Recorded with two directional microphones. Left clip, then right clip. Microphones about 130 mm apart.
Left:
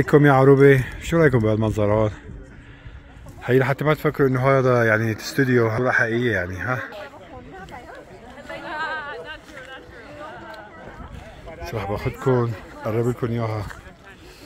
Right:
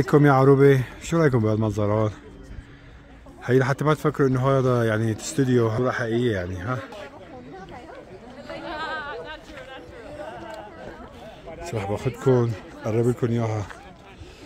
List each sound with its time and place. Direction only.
0.0 s speech: centre (ahead or behind)
3.4 s speech: 5° right (ahead or behind)
8.5 s chatter: 15° left (ahead or behind); by 9.4 s 35° left (ahead or behind)
11.6 s speech: 30° right (ahead or behind)